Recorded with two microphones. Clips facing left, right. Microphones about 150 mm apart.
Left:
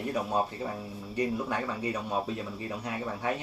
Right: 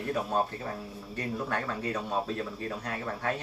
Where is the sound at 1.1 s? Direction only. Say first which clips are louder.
Left 3 dB; 15° left (ahead or behind).